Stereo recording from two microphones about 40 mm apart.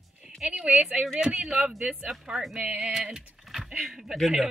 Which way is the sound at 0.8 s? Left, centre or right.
Centre.